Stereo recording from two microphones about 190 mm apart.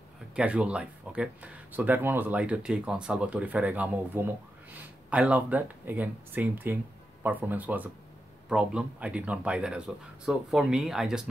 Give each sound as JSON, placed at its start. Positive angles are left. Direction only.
{"t": 0.4, "sound": "speech", "side_deg": -5}